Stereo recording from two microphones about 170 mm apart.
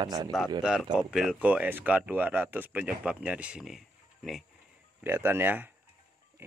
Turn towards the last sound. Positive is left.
turn(degrees=-10)  # may be behind; listen again after turning